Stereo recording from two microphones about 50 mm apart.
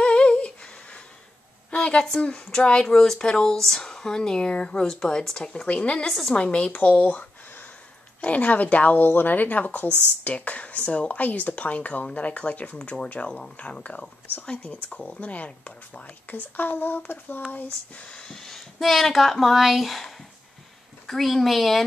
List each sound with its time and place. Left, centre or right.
0.0 s humming: left
1.7 s a sound: left
2.2 s speech: centre
3.6 s speech: centre; by 6.7 s left
6.7 s speech: left
9.0 s speech: left
16.5 s speech: left
18.1 s speech: centre